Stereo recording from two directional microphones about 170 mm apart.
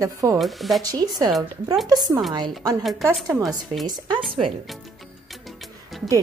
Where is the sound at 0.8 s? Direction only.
20° right (ahead or behind).